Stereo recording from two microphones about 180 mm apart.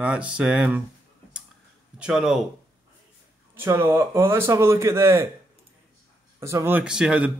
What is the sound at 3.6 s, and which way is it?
Speech, 15° right (ahead or behind).